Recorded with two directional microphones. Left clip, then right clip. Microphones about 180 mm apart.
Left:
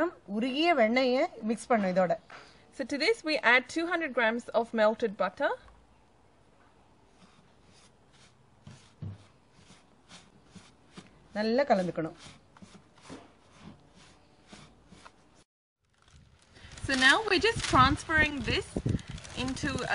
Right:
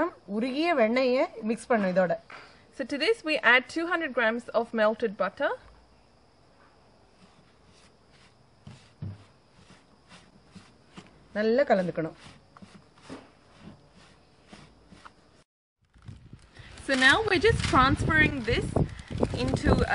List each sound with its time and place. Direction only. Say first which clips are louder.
0.0 s a woman's voice: right 2 dB; 15° right (ahead or behind)
2.8 s a woman's voice: right 2 dB; 10° left (ahead or behind)
11.3 s speech: right 3 dB; 20° right (ahead or behind)
16.8 s speech: right 2 dB; 10° right (ahead or behind)